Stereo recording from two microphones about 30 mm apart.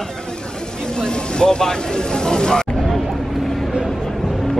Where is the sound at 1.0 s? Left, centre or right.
Left.